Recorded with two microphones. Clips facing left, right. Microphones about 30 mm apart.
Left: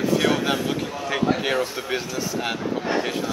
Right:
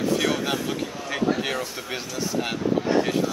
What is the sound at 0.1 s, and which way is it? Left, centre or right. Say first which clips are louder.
Speech: left 5 dB; centre.